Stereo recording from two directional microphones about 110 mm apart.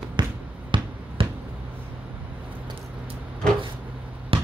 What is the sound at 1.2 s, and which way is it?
Finger snapping, 55° right (ahead or behind).